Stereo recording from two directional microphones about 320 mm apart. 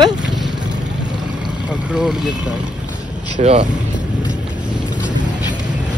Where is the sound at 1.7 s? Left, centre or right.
Centre.